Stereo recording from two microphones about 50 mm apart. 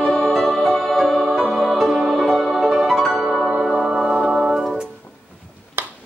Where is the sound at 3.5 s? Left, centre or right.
Centre.